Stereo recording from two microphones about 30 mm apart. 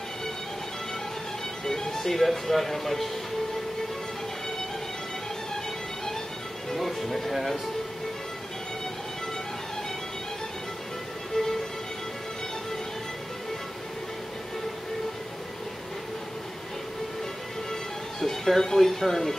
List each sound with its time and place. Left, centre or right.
1.6 s speech: centre
6.7 s speech: centre
11.4 s music: centre
18.2 s speech: centre